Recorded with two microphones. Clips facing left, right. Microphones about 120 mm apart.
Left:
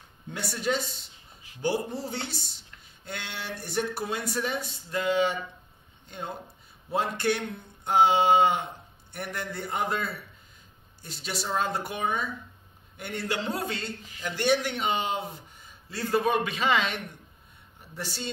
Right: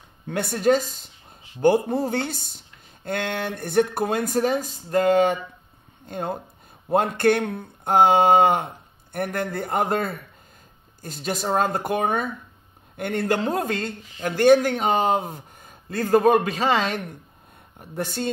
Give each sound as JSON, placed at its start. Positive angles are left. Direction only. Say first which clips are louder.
{"t": 0.3, "sound": "speech", "louder": "right 9 dB", "side_deg": -50}
{"t": 17.7, "sound": "speech", "louder": "right 9 dB", "side_deg": -50}